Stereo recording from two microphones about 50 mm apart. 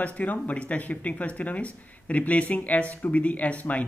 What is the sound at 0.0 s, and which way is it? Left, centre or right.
Speech, left.